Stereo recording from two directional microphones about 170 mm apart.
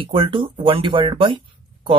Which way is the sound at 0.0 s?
30° right (ahead or behind).